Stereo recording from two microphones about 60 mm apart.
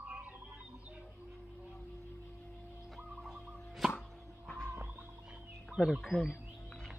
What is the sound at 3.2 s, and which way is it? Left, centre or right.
Music, centre.